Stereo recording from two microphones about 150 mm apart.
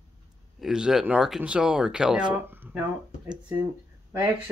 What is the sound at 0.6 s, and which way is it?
Speech, 5° right (ahead or behind).